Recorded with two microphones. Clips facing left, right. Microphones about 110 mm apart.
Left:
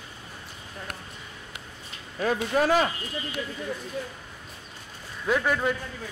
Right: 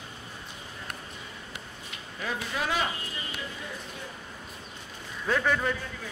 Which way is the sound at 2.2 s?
45° left (ahead or behind).